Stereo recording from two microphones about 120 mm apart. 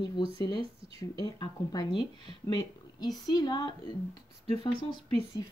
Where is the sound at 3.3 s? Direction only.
35° left (ahead or behind).